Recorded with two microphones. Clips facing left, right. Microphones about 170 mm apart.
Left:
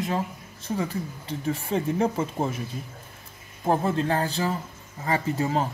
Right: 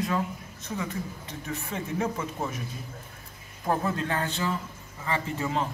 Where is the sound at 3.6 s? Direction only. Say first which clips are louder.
Left 4 dB; 30° left (ahead or behind).